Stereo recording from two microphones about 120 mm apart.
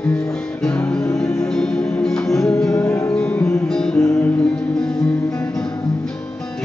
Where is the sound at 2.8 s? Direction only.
25° left (ahead or behind).